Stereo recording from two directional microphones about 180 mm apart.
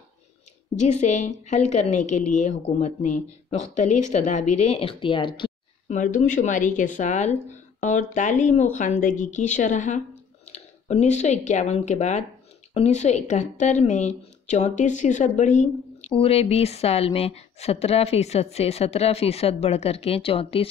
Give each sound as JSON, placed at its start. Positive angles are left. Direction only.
{"t": 0.7, "sound": "a woman's voice", "side_deg": 40}
{"t": 5.9, "sound": "a woman's voice", "side_deg": 45}